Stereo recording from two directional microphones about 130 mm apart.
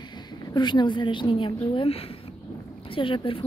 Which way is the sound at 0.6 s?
35° left (ahead or behind).